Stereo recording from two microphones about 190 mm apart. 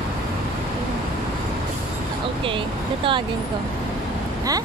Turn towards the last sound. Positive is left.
turn(degrees=-25)  # may be behind; listen again after turning